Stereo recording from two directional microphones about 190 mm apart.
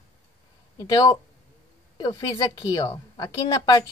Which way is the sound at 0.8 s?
20° left (ahead or behind).